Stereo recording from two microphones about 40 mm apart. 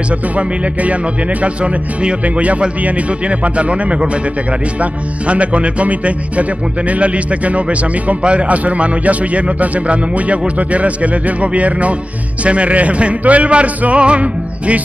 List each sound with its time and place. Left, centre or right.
1.4 s speech: right
5.2 s speech: right